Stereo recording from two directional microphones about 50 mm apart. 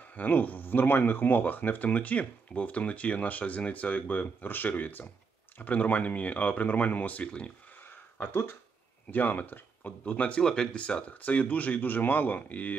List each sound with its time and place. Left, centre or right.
0.1 s speech: left
9.1 s speech: left
10.4 s speech: centre; by 12.7 s left